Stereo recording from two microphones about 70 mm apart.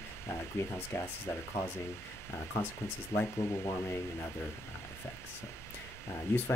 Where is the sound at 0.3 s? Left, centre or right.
Left.